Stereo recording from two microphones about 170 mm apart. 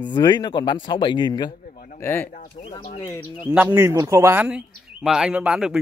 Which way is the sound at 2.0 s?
15° left (ahead or behind).